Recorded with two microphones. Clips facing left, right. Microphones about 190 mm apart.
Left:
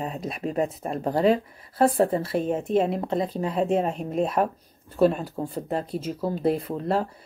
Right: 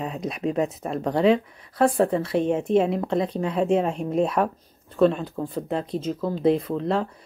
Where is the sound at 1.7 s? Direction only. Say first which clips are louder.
Right 1 dB; 30° left (ahead or behind).